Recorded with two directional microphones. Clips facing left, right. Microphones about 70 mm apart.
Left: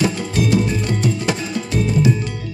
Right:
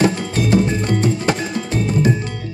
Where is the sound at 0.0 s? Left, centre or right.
Right.